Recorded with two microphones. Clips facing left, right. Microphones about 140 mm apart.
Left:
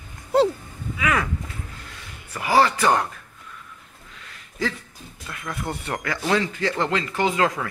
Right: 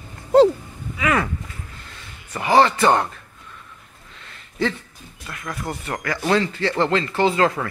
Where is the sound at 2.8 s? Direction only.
30° right (ahead or behind).